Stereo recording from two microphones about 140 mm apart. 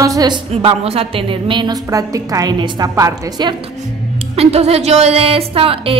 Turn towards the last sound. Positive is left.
turn(degrees=-40)  # may be behind; listen again after turning